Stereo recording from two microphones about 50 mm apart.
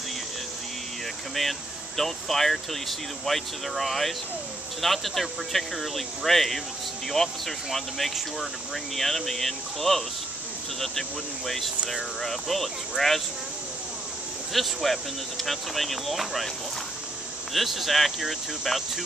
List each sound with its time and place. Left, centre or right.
1.3 s speech: centre
14.5 s speech: centre
17.6 s speech: centre